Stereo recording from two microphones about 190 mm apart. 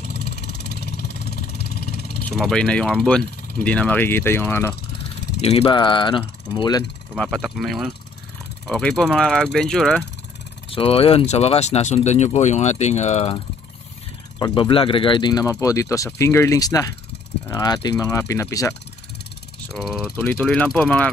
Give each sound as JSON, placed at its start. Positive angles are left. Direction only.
{"t": 0.1, "sound": "vehicle", "side_deg": 60}
{"t": 2.2, "sound": "speech", "side_deg": 5}
{"t": 5.4, "sound": "speech", "side_deg": 30}
{"t": 7.2, "sound": "speech", "side_deg": 5}
{"t": 10.7, "sound": "speech", "side_deg": 30}
{"t": 14.4, "sound": "speech", "side_deg": 25}
{"t": 19.7, "sound": "speech", "side_deg": 0}